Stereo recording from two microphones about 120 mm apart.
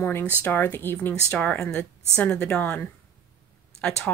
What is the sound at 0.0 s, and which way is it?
Speech, 15° left (ahead or behind).